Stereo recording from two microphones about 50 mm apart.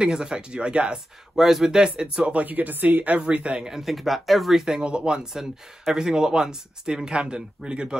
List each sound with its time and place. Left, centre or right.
0.0 s speech: centre
3.6 s speech: centre
4.8 s speech: centre